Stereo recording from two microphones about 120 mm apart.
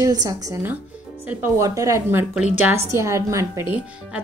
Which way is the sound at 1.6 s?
25° right (ahead or behind).